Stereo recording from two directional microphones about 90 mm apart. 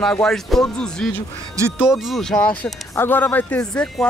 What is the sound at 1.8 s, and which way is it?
Speech, 5° right (ahead or behind).